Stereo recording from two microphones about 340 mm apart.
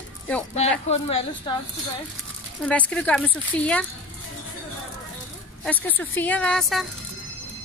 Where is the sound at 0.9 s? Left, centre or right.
Centre.